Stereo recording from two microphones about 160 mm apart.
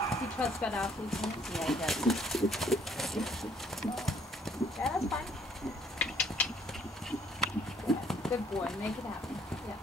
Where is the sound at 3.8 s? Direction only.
Centre (ahead or behind).